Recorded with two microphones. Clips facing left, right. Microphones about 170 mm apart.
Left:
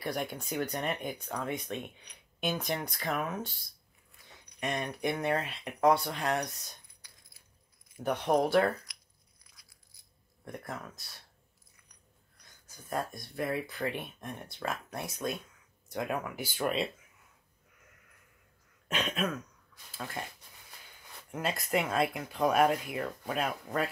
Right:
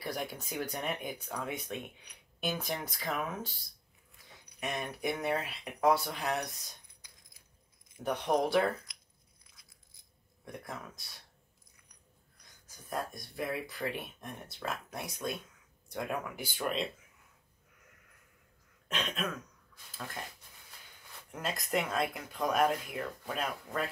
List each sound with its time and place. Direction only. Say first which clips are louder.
0.2 s speech: left 3 dB; centre (ahead or behind)
7.0 s a sound: even; 20° right (ahead or behind)
8.0 s speech: left 2 dB; centre (ahead or behind)
9.4 s a sound: left 1 dB; 25° right (ahead or behind)
10.4 s speech: left 3 dB; centre (ahead or behind)
12.6 s speech: left 3 dB; centre (ahead or behind)
18.9 s speech: left 4 dB; 5° left (ahead or behind)
21.3 s speech: left 3 dB; 5° left (ahead or behind)